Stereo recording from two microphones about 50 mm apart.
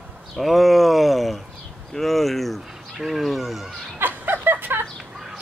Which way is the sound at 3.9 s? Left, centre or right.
Right.